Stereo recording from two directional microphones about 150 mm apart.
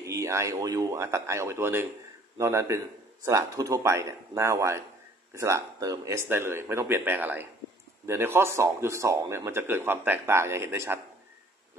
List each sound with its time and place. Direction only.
0.0 s speech: 20° right (ahead or behind)